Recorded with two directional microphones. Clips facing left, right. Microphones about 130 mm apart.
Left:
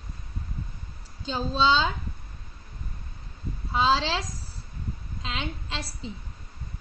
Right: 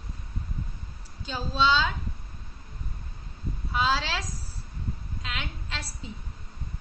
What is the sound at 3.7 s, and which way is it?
Speech, 25° left (ahead or behind).